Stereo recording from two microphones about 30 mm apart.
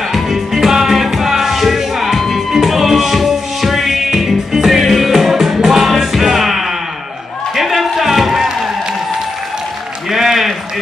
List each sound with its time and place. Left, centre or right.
0.1 s music: centre
7.5 s a sound: centre
10.1 s run: centre